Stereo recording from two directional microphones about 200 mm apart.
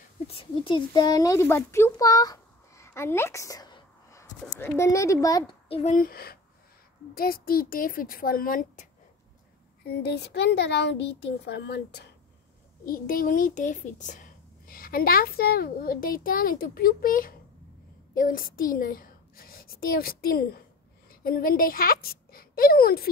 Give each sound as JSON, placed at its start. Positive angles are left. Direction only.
{"t": 0.3, "sound": "a child's voice", "side_deg": 25}
{"t": 6.0, "sound": "a child's voice", "side_deg": 50}
{"t": 9.8, "sound": "a child's voice", "side_deg": 55}